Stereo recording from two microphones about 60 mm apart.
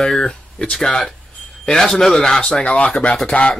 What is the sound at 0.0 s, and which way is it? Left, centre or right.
Speech, centre.